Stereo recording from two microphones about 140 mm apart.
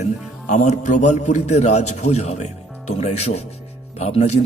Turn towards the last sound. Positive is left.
turn(degrees=50)  # may be behind; listen again after turning